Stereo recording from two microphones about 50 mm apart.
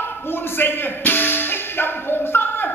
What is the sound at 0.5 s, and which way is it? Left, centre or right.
Music, left.